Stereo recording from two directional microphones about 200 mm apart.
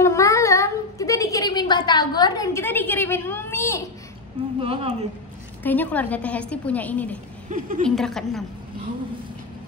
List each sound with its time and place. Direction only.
0.0 s a sound: 15° left (ahead or behind)
4.6 s speech: 30° right (ahead or behind)
5.6 s a woman's voice: 10° left (ahead or behind)
7.4 s speech: 40° right (ahead or behind)
7.8 s a woman's voice: centre (ahead or behind)